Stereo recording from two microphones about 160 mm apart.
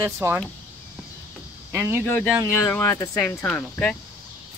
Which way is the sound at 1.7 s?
15° right (ahead or behind).